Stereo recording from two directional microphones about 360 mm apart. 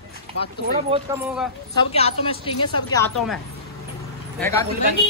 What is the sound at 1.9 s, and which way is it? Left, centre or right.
A woman's voice, centre.